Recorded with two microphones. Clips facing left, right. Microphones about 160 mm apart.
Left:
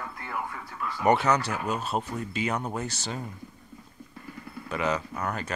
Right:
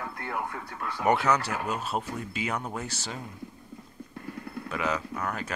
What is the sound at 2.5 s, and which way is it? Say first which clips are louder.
Speech: left 2 dB; 10° left (ahead or behind).